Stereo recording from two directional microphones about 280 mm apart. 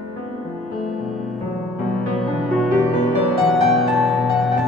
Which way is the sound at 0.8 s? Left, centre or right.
Centre.